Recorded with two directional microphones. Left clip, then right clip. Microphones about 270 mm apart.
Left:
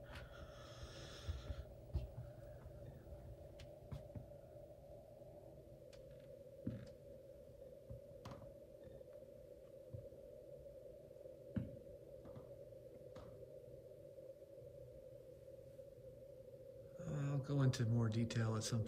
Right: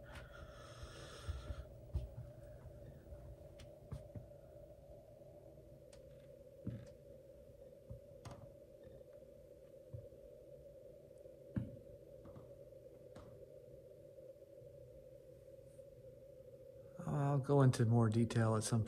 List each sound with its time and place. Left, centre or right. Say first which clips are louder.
16.9 s speech: right 7 dB; centre